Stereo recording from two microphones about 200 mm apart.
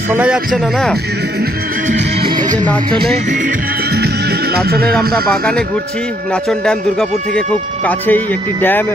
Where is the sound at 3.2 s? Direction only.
40° right (ahead or behind).